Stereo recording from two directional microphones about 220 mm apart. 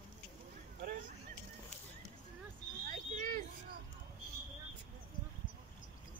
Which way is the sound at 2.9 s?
35° right (ahead or behind).